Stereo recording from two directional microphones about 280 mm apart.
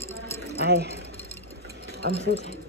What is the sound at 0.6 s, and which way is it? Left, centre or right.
Speech, right.